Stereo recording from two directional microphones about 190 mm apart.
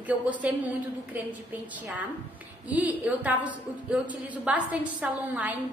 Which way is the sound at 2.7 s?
10° right (ahead or behind).